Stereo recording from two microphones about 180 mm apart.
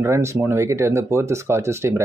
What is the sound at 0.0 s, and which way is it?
Speech, 15° right (ahead or behind).